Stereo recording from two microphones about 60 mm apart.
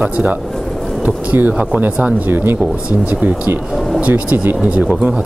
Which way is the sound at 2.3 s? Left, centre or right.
Right.